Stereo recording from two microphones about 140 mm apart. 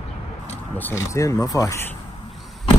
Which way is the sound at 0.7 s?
15° left (ahead or behind).